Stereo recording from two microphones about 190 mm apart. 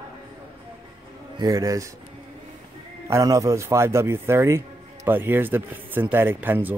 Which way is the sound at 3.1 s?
15° right (ahead or behind).